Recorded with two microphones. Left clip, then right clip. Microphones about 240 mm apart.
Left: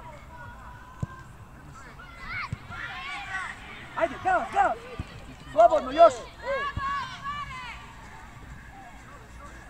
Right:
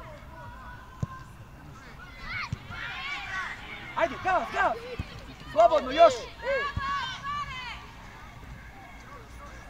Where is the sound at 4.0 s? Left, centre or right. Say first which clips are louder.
Left 1 dB; right.